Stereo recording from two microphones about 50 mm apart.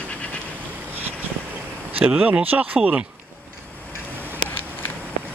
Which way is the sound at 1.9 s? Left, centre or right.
Right.